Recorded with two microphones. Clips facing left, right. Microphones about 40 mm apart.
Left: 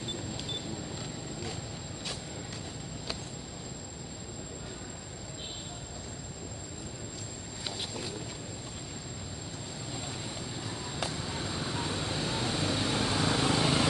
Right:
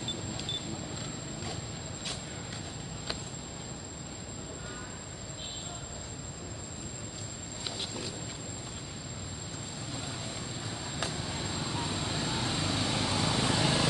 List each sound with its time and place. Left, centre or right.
11.0 s vehicle: centre